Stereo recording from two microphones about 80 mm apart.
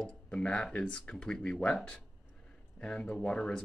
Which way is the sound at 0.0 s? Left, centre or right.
Centre.